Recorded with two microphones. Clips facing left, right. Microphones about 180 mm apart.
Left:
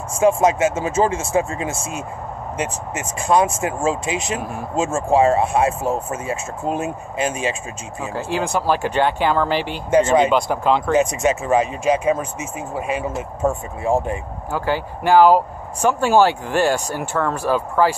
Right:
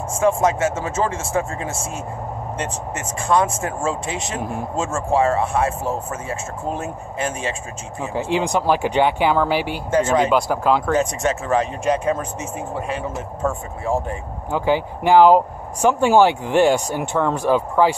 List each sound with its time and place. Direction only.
0.2 s speech: 15° left (ahead or behind)
8.1 s speech: 20° right (ahead or behind)
10.9 s speech: 10° left (ahead or behind)
14.5 s speech: 15° right (ahead or behind)